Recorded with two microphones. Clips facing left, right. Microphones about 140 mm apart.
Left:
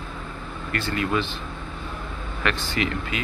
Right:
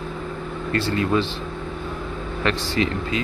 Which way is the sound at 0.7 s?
30° right (ahead or behind).